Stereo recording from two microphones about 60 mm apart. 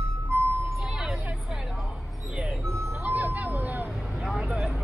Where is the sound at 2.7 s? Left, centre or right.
Right.